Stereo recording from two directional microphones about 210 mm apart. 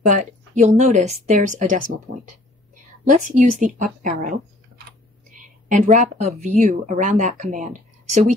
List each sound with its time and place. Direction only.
0.0 s speech: 35° right (ahead or behind)
3.1 s speech: 35° right (ahead or behind)
5.4 s a woman's voice: 35° right (ahead or behind)